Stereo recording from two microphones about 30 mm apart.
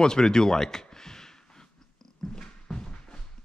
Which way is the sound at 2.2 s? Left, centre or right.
Left.